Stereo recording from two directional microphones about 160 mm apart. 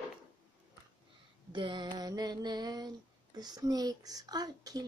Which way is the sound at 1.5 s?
30° right (ahead or behind).